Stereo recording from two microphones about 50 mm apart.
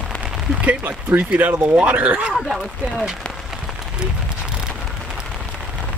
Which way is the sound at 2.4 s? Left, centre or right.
Centre.